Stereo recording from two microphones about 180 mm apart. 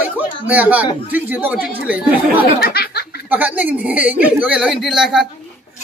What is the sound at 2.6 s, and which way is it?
Speech, 60° left (ahead or behind).